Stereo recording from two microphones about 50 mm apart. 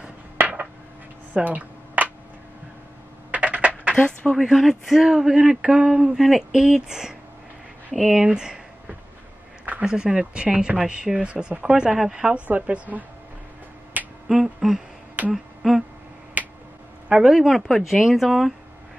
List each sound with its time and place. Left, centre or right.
0.4 s a sound: right
3.3 s a sound: right
4.3 s speech: centre
6.1 s speech: centre
8.3 s speech: centre
9.8 s speech: centre
12.4 s speech: right
14.2 s speech: centre
15.3 s a sound: centre
16.4 s finger snapping: right
17.1 s speech: centre
17.6 s speech: centre